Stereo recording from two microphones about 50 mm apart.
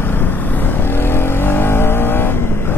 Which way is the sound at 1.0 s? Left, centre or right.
Left.